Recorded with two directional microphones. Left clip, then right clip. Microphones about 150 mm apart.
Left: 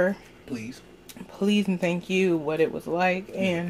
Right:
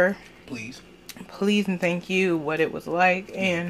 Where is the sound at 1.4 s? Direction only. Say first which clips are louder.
Right 2 dB; 5° left (ahead or behind).